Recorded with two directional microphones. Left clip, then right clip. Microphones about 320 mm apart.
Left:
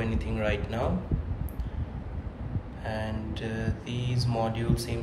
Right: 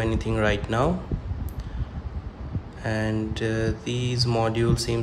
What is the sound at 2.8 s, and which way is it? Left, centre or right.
Speech, right.